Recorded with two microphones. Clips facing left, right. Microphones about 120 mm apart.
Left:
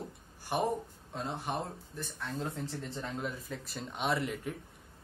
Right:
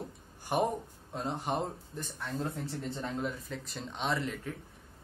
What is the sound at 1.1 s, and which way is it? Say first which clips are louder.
Speech: right 3 dB; 15° right (ahead or behind).